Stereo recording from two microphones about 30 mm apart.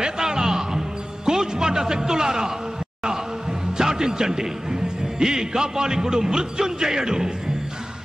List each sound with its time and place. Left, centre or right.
0.0 s music: centre
3.8 s a man's voice: centre